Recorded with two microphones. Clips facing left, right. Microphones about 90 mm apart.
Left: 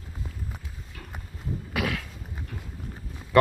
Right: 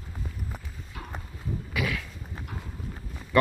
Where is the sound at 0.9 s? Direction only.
35° right (ahead or behind).